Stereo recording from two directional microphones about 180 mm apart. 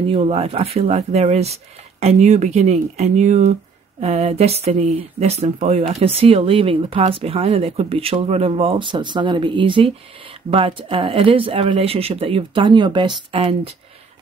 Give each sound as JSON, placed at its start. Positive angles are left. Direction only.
{"t": 0.0, "sound": "speech", "side_deg": -30}